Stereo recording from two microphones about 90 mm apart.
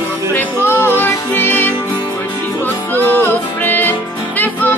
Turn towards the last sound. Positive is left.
turn(degrees=20)  # may be behind; listen again after turning